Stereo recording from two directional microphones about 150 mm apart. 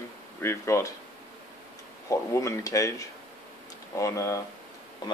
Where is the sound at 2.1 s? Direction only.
20° left (ahead or behind).